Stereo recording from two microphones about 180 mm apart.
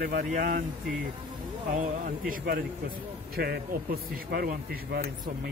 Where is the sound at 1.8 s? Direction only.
50° right (ahead or behind).